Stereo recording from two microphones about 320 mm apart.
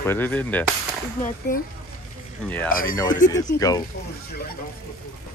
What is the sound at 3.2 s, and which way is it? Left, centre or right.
Speech, left.